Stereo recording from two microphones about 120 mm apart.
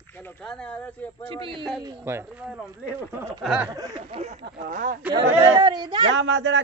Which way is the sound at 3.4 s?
10° right (ahead or behind).